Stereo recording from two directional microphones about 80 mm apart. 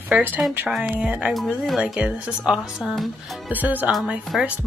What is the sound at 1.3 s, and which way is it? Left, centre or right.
Music, centre.